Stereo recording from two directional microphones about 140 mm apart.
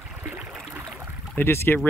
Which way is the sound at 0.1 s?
10° right (ahead or behind).